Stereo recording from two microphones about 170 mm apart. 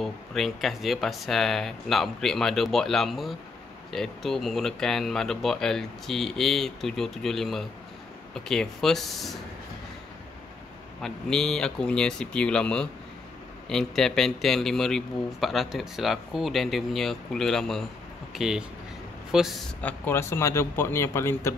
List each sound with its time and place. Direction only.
0.0 s speech: centre (ahead or behind)
11.0 s speech: 5° left (ahead or behind)
19.8 s speech: 10° left (ahead or behind)